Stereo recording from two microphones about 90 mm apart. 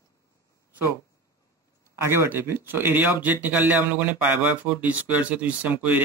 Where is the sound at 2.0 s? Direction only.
25° right (ahead or behind).